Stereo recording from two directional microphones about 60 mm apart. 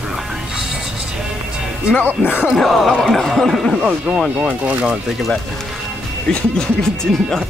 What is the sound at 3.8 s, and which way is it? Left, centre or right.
Speech, centre.